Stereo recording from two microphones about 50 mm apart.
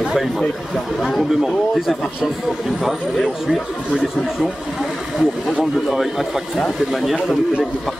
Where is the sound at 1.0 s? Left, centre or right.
Centre.